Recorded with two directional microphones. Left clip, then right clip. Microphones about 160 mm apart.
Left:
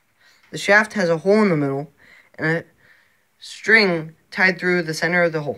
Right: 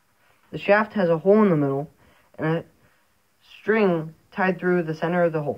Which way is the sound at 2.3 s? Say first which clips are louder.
Left 4 dB; 50° left (ahead or behind).